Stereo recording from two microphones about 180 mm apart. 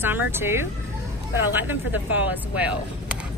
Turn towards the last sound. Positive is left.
turn(degrees=-10)  # may be behind; listen again after turning